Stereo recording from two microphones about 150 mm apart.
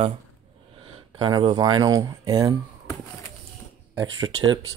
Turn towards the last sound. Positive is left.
turn(degrees=-25)  # may be behind; listen again after turning